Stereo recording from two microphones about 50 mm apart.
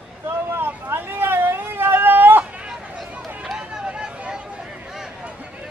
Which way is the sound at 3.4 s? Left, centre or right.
Centre.